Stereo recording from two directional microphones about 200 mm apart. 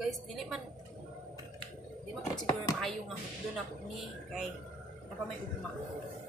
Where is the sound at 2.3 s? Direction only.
20° left (ahead or behind).